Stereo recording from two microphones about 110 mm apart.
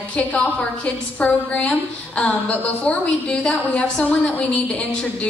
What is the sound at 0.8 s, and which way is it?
A woman's voice, 10° left (ahead or behind).